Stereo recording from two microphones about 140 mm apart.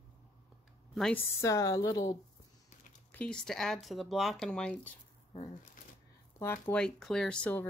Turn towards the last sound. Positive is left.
turn(degrees=10)  # may be behind; listen again after turning